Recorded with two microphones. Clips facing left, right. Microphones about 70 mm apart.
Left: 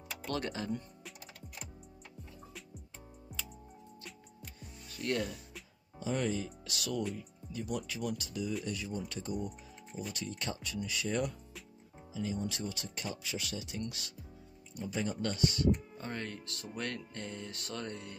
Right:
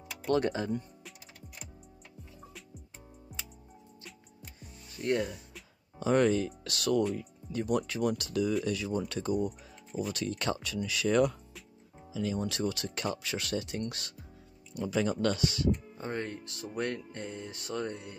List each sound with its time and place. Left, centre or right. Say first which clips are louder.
0.3 s speech: right 9 dB; right
0.7 s music: right 4 dB; centre
3.3 s music: even; centre
4.9 s speech: right 4 dB; right
5.9 s speech: right 8 dB; right
8.3 s speech: right 7 dB; right
10.1 s speech: right 7 dB; right
14.8 s speech: right 6 dB; right
16.0 s speech: right 5 dB; right
17.6 s music: right 9 dB; centre